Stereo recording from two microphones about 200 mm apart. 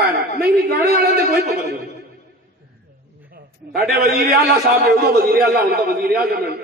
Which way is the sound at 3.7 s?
50° right (ahead or behind).